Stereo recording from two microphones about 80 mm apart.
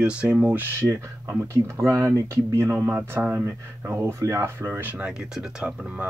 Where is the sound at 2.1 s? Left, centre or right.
Right.